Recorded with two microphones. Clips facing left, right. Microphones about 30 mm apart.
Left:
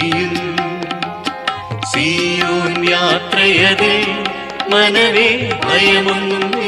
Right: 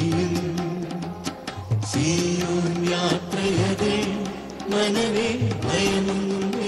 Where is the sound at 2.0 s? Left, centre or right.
Left.